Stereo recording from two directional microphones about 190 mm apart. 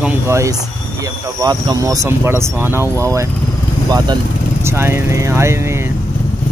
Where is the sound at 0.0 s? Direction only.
15° right (ahead or behind).